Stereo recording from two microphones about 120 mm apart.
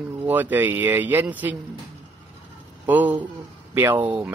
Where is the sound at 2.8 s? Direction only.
15° right (ahead or behind).